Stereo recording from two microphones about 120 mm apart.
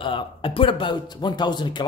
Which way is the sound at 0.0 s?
45° left (ahead or behind).